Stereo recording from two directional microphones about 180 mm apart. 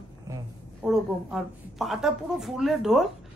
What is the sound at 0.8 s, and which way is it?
Speech, centre (ahead or behind).